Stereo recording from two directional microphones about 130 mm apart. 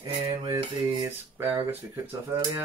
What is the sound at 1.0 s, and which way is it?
Speech, 15° right (ahead or behind).